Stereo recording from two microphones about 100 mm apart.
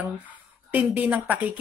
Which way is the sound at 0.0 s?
15° right (ahead or behind).